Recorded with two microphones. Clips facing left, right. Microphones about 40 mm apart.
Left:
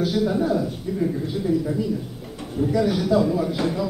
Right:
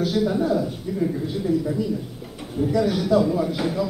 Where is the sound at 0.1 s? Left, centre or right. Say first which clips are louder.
Even; centre.